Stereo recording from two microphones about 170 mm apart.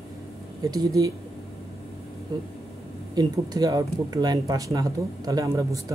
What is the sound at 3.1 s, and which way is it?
Speech, 20° right (ahead or behind).